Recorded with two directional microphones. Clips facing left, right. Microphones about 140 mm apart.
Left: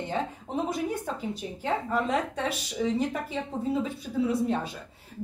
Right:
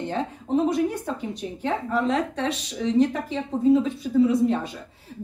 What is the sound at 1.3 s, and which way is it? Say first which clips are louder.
A woman's voice: right 2 dB; 5° left (ahead or behind).